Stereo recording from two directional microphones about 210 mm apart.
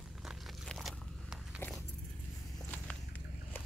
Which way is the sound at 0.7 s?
Centre (ahead or behind).